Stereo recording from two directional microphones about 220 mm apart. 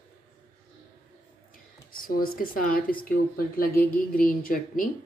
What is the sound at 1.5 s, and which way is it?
Speech, 40° left (ahead or behind).